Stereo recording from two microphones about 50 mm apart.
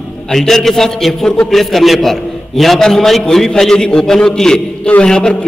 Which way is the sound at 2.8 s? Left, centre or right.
Centre.